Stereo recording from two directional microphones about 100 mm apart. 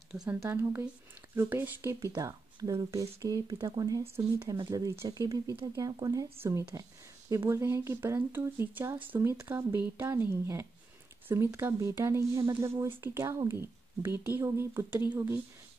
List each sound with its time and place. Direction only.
0.4 s speech: 20° right (ahead or behind)
2.1 s speech: 35° right (ahead or behind)